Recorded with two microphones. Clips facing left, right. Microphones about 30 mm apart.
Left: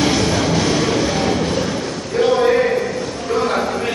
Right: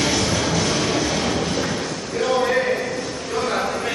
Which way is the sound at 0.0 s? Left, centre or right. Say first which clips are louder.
Left 4 dB; centre.